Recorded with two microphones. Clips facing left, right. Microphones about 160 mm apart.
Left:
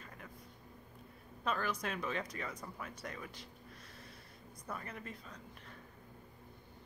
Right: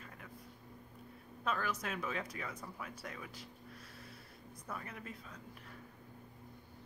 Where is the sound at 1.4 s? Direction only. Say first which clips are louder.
Left 1 dB; centre (ahead or behind).